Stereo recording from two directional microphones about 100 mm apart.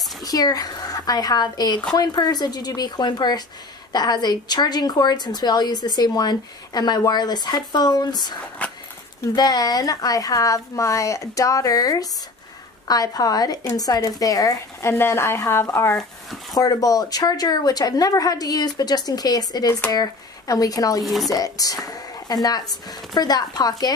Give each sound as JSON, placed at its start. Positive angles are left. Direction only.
{"t": 0.2, "sound": "a woman's voice", "side_deg": 40}
{"t": 8.6, "sound": "a sound", "side_deg": 15}
{"t": 9.2, "sound": "a woman's voice", "side_deg": 40}
{"t": 16.5, "sound": "a woman's voice", "side_deg": 35}
{"t": 21.0, "sound": "speech", "side_deg": 0}
{"t": 21.3, "sound": "a woman's voice", "side_deg": 35}